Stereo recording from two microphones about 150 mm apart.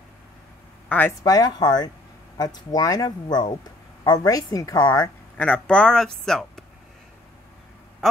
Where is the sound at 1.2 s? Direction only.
25° left (ahead or behind).